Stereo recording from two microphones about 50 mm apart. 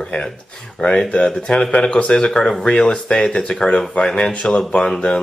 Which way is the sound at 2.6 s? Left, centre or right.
Left.